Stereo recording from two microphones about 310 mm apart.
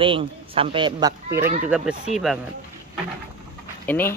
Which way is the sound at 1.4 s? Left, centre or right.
Right.